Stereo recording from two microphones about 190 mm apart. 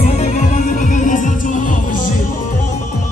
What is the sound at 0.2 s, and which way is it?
Music, 35° left (ahead or behind).